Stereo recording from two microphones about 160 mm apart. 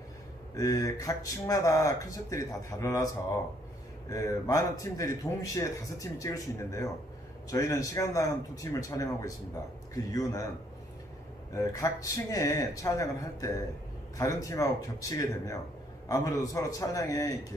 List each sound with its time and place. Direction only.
0.6 s a man's voice: 20° left (ahead or behind)
4.1 s a man's voice: 20° left (ahead or behind)
11.5 s a man's voice: 20° left (ahead or behind)